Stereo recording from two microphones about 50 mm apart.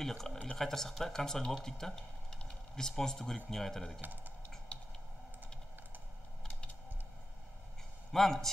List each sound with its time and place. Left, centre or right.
0.0 s speech: centre
4.0 s speech: right
8.1 s speech: centre